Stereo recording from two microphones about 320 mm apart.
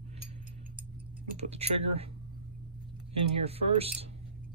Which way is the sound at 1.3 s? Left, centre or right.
Centre.